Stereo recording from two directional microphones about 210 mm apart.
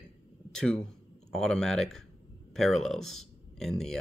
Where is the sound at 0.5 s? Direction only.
5° left (ahead or behind).